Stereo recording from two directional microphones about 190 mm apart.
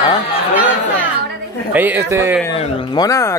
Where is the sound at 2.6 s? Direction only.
20° left (ahead or behind).